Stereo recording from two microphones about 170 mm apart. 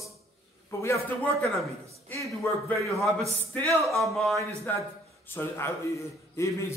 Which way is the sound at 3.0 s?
Centre (ahead or behind).